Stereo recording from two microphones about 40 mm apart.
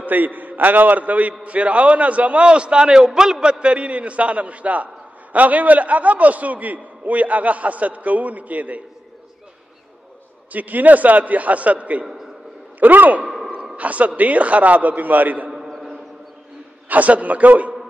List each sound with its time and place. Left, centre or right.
0.0 s a man's voice: right
10.5 s a man's voice: right
12.8 s a man's voice: right
13.2 s a sound: centre
13.7 s a man's voice: right
16.9 s a man's voice: right